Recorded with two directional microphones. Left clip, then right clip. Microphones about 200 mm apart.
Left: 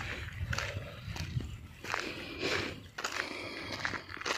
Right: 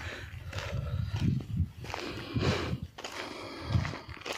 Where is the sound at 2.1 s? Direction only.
25° right (ahead or behind).